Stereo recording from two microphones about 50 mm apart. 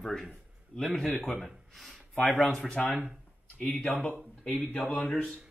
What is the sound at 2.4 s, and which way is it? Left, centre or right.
Speech, centre.